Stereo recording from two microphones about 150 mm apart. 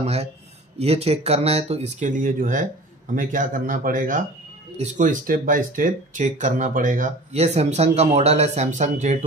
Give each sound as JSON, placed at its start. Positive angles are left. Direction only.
{"t": 0.0, "sound": "speech", "side_deg": -45}